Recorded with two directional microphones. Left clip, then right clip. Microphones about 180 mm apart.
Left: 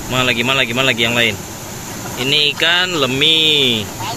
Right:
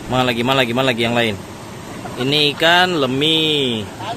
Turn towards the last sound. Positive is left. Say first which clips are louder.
# left 4 dB
turn(degrees=-15)  # may be behind; listen again after turning